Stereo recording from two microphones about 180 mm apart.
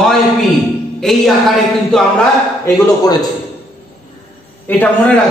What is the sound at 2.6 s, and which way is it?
Speech, 20° left (ahead or behind).